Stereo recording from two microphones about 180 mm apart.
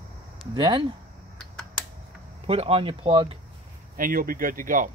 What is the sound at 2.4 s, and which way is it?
Speech, 30° right (ahead or behind).